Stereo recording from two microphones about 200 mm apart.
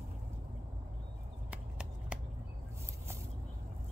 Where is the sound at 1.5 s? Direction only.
5° right (ahead or behind).